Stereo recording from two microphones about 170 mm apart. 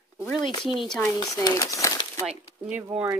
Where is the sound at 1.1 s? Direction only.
20° left (ahead or behind).